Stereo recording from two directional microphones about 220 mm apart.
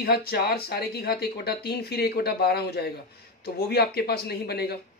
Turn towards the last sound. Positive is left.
turn(degrees=45)  # may be behind; listen again after turning